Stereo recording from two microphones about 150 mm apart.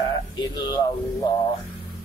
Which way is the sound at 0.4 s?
30° left (ahead or behind).